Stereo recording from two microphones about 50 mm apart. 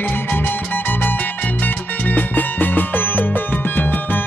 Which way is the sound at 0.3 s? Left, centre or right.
Left.